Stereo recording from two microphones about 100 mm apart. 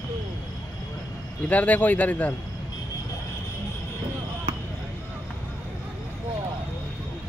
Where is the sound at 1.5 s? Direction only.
15° left (ahead or behind).